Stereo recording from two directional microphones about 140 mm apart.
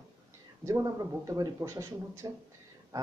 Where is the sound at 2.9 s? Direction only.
25° right (ahead or behind).